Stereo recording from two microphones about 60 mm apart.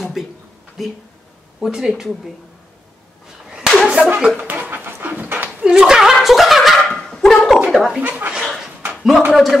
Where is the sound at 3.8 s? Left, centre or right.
Right.